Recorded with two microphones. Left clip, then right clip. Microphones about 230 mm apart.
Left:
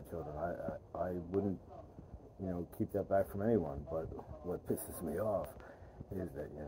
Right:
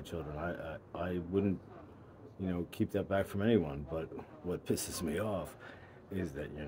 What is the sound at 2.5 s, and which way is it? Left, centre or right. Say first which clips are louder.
A man's voice: right 3 dB; right.